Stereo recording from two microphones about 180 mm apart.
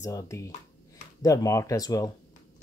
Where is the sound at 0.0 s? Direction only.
15° left (ahead or behind).